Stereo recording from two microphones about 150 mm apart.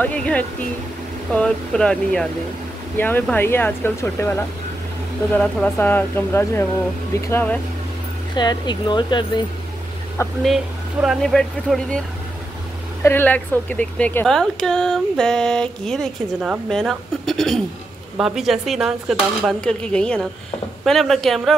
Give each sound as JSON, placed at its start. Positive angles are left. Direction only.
{"t": 0.0, "sound": "a woman's voice", "side_deg": 10}
{"t": 8.4, "sound": "speech", "side_deg": 30}
{"t": 10.4, "sound": "a woman's voice", "side_deg": 0}
{"t": 13.0, "sound": "a woman's voice", "side_deg": 15}